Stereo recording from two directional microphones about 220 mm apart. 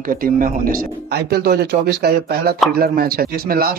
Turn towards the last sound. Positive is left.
turn(degrees=-40)  # may be behind; listen again after turning